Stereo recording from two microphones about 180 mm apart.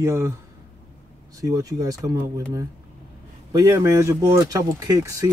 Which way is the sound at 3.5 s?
15° right (ahead or behind).